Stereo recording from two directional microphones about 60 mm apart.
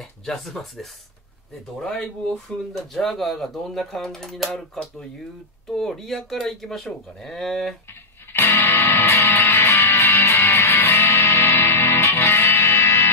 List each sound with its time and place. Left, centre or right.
0.2 s speech: centre
2.9 s speech: centre
5.8 s speech: centre
8.3 s music: left
11.5 s music: left
12.0 s music: left